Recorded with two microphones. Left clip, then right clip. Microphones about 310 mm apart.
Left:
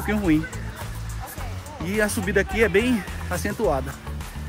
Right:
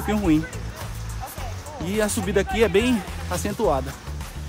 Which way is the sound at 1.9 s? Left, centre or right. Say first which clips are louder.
Even; centre.